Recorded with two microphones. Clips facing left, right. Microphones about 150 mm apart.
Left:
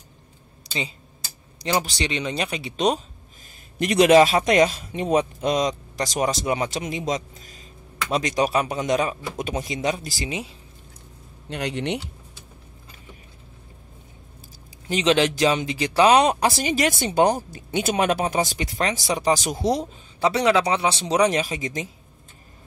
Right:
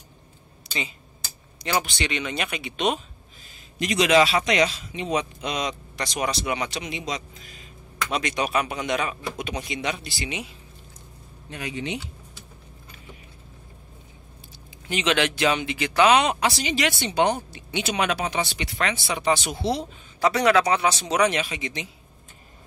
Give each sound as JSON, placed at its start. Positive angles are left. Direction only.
{"t": 0.7, "sound": "a sound", "side_deg": 35}
{"t": 1.6, "sound": "speech", "side_deg": 35}
{"t": 3.8, "sound": "speech", "side_deg": 55}
{"t": 11.4, "sound": "speech", "side_deg": 75}
{"t": 14.9, "sound": "speech", "side_deg": 35}
{"t": 20.2, "sound": "speech", "side_deg": 25}